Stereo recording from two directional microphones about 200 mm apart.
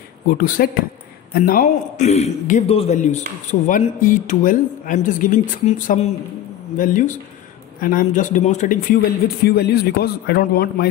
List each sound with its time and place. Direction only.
0.3 s a man's voice: 45° left (ahead or behind)